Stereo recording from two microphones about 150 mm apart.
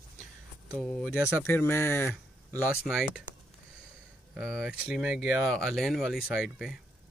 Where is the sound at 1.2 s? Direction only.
15° left (ahead or behind).